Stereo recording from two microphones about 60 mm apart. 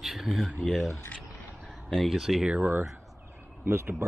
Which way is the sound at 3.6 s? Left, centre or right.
Right.